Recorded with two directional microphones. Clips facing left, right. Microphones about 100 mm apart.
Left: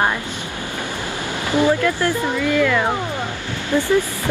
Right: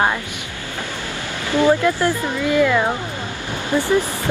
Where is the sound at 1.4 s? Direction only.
20° left (ahead or behind).